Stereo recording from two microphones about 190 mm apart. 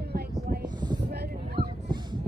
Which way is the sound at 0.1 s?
55° right (ahead or behind).